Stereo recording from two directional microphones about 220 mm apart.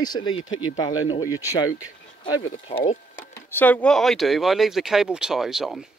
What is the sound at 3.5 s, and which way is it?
Speech, 10° left (ahead or behind).